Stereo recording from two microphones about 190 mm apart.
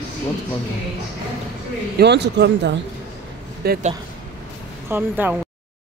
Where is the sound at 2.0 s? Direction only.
65° right (ahead or behind).